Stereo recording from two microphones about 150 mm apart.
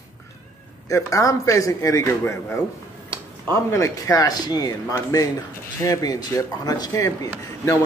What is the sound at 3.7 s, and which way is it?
A man's voice, 20° left (ahead or behind).